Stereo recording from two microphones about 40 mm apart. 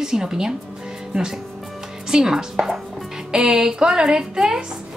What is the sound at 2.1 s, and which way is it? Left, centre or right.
A woman's voice, centre.